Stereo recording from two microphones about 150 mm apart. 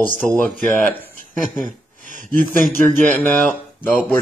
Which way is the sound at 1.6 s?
60° right (ahead or behind).